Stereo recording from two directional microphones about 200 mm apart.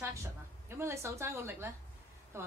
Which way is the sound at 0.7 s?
10° right (ahead or behind).